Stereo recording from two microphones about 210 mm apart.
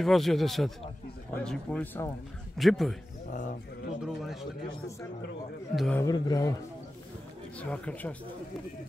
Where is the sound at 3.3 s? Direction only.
35° left (ahead or behind).